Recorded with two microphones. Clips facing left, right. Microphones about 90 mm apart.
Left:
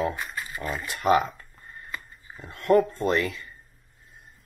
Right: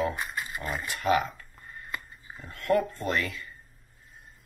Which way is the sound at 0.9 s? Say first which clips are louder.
Left 4 dB; 25° left (ahead or behind).